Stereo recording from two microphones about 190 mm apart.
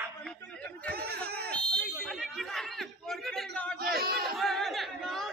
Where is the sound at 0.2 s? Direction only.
5° left (ahead or behind).